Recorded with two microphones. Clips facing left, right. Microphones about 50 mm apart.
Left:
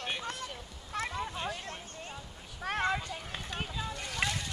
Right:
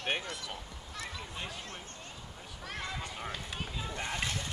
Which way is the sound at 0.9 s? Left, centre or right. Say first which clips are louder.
Left 8 dB; left.